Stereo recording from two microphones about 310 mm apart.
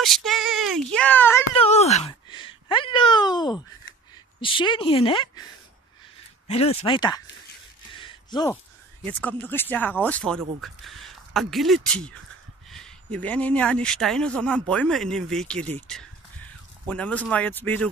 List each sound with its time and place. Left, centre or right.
0.0 s child singing: centre
1.6 s a sound: left
4.4 s speech: centre
8.0 s a sound: centre
9.0 s speech: centre
16.8 s speech: centre